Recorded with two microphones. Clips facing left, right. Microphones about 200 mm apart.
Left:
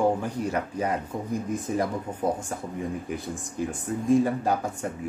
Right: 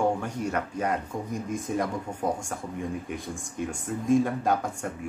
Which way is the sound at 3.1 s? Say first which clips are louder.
Left 2 dB; centre (ahead or behind).